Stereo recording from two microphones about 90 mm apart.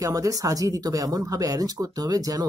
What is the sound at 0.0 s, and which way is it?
Speech, 40° right (ahead or behind).